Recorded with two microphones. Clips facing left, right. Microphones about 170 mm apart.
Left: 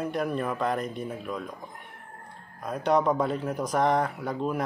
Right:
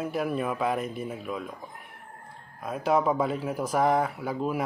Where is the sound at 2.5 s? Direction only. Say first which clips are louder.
Left 1 dB; 5° right (ahead or behind).